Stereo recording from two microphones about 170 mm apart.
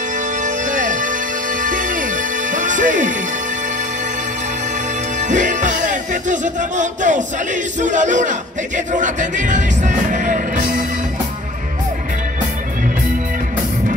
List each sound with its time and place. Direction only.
0.4 s music: 50° right (ahead or behind)
5.3 s music: 45° right (ahead or behind)